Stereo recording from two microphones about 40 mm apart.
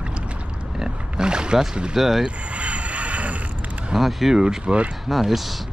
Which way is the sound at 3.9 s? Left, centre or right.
Centre.